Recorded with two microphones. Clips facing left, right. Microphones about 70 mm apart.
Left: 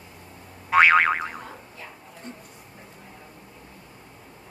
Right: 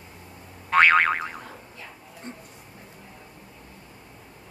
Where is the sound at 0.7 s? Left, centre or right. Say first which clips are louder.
Left 1 dB; centre.